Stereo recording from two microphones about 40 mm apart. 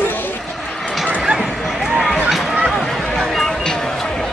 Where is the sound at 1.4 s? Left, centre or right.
Centre.